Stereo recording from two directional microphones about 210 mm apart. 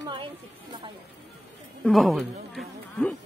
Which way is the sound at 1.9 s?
Centre (ahead or behind).